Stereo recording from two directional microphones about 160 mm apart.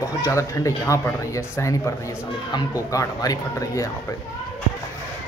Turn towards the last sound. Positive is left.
turn(degrees=20)  # may be behind; listen again after turning